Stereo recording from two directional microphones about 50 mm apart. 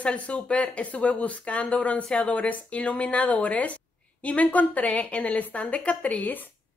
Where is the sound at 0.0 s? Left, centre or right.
Left.